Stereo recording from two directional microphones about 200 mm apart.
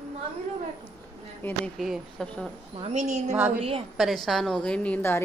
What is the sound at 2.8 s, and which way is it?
A woman's voice, 35° right (ahead or behind).